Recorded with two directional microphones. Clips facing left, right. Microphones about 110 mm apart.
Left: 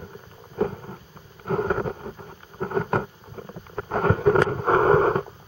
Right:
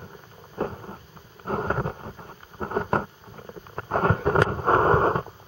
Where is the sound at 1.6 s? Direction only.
10° right (ahead or behind).